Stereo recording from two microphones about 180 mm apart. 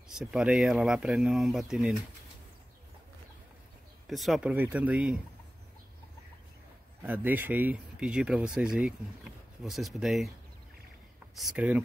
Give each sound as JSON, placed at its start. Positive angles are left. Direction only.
{"t": 0.1, "sound": "speech", "side_deg": 0}
{"t": 4.1, "sound": "speech", "side_deg": 0}
{"t": 7.0, "sound": "speech", "side_deg": -10}
{"t": 11.3, "sound": "speech", "side_deg": -5}